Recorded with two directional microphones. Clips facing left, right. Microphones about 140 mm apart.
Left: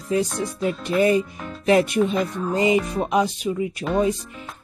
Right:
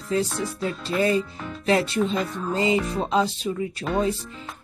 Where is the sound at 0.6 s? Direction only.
20° left (ahead or behind).